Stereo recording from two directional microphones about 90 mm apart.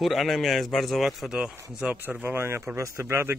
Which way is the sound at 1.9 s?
20° right (ahead or behind).